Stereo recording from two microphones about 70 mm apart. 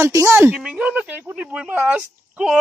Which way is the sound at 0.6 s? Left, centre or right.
Centre.